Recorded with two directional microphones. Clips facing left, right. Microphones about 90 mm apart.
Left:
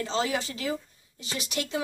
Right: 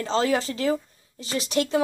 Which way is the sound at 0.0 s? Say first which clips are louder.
Right 5 dB; 40° right (ahead or behind).